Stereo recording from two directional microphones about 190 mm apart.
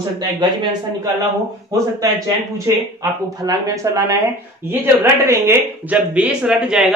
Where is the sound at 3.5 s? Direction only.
20° right (ahead or behind).